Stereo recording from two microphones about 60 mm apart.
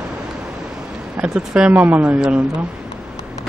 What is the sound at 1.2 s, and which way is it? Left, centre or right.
Speech, centre.